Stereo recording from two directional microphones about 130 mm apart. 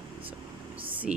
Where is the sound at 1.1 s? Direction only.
10° right (ahead or behind).